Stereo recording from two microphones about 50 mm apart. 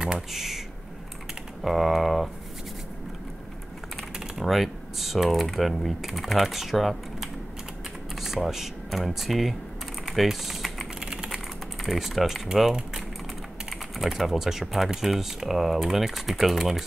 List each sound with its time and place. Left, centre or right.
0.0 s speech: centre
1.6 s speech: centre
4.4 s speech: centre
10.2 s typing: centre
11.0 s typing: centre
11.2 s typing: centre
13.7 s speech: centre